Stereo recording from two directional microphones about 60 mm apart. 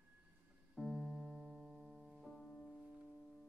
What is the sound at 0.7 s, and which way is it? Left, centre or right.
Piano, centre.